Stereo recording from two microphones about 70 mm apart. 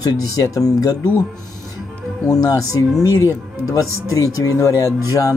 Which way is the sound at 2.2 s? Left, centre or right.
Left.